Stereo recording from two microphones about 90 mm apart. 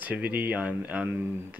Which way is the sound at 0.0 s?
20° right (ahead or behind).